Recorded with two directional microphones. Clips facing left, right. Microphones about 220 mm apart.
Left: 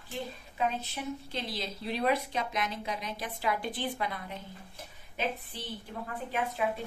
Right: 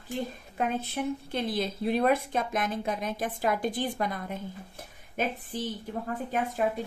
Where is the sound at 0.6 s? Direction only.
55° right (ahead or behind).